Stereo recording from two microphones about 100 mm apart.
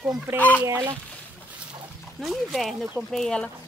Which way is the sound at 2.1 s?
Centre (ahead or behind).